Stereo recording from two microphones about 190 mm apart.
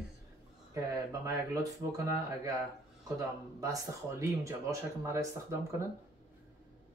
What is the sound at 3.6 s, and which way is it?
Speech, 15° right (ahead or behind).